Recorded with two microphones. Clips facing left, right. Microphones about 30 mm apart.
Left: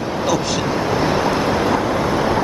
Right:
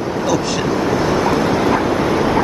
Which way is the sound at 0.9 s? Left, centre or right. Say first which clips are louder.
Right 1 dB; centre.